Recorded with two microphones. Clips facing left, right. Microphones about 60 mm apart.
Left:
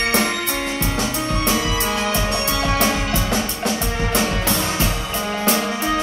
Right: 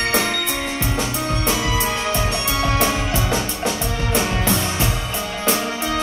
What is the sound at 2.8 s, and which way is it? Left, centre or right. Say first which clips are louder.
Music: even; centre.